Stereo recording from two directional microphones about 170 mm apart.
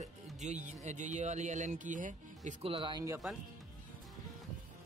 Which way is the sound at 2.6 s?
30° right (ahead or behind).